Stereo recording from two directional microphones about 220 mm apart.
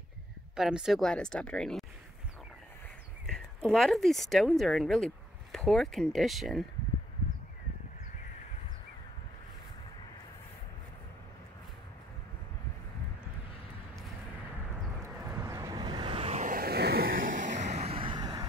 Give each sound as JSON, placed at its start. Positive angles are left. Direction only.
{"t": 0.6, "sound": "speech", "side_deg": 0}
{"t": 3.3, "sound": "speech", "side_deg": 5}
{"t": 15.3, "sound": "vehicle", "side_deg": -15}